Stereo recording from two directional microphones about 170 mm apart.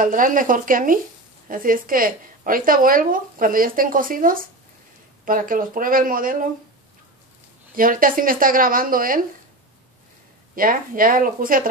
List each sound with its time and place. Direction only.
0.0 s a woman's voice: 50° right (ahead or behind)
7.7 s a woman's voice: 55° right (ahead or behind)
10.5 s a woman's voice: 55° right (ahead or behind)